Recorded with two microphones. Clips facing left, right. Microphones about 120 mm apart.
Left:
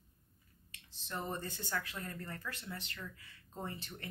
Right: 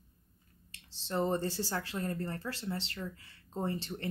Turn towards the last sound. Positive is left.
turn(degrees=-30)  # may be behind; listen again after turning